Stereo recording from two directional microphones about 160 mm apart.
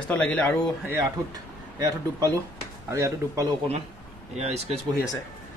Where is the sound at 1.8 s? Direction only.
20° right (ahead or behind).